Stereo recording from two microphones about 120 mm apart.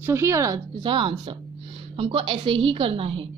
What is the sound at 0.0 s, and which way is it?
Speech, 20° right (ahead or behind).